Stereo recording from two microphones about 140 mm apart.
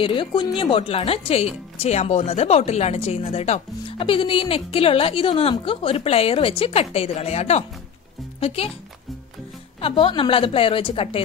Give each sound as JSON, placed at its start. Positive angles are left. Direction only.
{"t": 0.0, "sound": "a woman's voice", "side_deg": 35}
{"t": 3.8, "sound": "speech", "side_deg": 40}
{"t": 9.8, "sound": "a woman's voice", "side_deg": 40}